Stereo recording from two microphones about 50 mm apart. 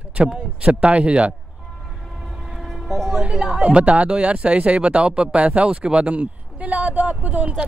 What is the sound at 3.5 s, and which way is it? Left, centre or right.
Speech, right.